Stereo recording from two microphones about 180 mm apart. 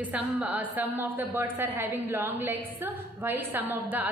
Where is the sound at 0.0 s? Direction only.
10° right (ahead or behind).